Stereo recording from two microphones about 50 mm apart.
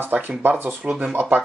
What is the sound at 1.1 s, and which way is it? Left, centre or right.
Speech, right.